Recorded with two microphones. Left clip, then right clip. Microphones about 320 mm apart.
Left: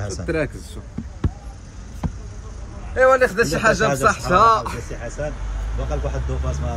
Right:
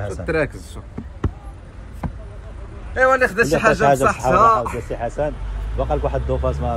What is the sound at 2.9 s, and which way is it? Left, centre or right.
A man's voice, centre.